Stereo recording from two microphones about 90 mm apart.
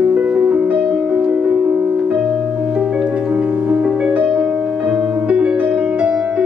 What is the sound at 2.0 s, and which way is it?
Music, 5° right (ahead or behind).